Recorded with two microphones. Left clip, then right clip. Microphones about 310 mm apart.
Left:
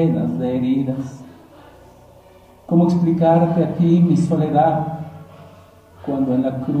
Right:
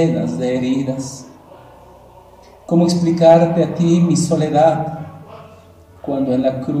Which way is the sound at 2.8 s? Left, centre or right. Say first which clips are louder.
Right 7 dB; right.